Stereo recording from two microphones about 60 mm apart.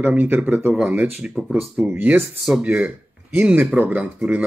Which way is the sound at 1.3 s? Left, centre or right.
Centre.